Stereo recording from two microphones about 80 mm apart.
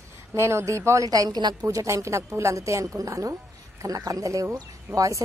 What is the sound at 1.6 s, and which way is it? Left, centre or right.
A woman's voice, right.